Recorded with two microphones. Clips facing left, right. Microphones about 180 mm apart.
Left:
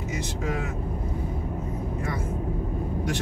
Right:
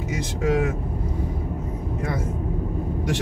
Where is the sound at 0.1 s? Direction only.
90° right.